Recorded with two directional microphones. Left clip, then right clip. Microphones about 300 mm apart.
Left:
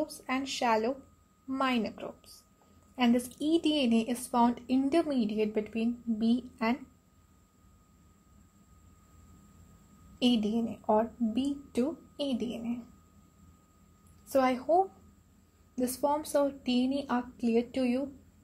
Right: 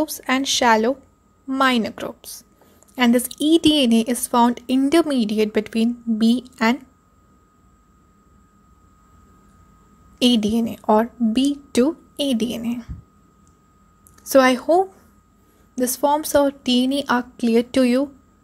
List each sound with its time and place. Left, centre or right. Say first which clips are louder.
0.0 s a woman's voice: right 12 dB; right
10.1 s a woman's voice: right 11 dB; centre
14.3 s a woman's voice: right 11 dB; right